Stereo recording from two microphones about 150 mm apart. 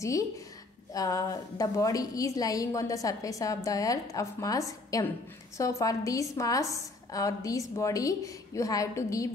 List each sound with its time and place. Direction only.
0.9 s a woman's voice: 25° left (ahead or behind)